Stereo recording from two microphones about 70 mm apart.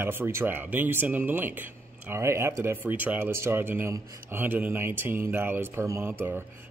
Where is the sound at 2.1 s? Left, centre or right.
Right.